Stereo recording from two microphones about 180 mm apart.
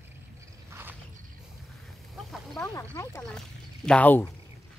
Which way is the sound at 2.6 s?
15° left (ahead or behind).